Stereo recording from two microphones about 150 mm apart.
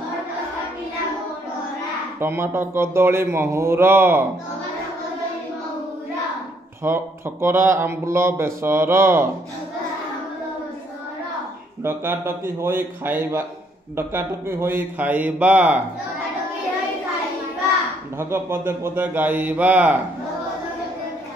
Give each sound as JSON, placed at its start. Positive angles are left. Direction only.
{"t": 2.1, "sound": "speech", "side_deg": -15}
{"t": 6.8, "sound": "speech", "side_deg": -15}
{"t": 11.8, "sound": "speech", "side_deg": -15}
{"t": 18.3, "sound": "speech", "side_deg": -15}